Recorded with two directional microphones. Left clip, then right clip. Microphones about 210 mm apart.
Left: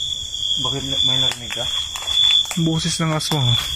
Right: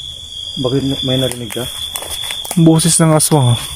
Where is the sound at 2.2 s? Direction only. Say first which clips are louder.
Left 6 dB; 35° right (ahead or behind).